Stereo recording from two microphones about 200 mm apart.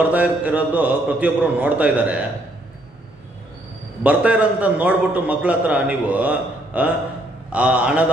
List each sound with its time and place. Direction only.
0.0 s a man's voice: 10° right (ahead or behind)
4.0 s a man's voice: 5° right (ahead or behind)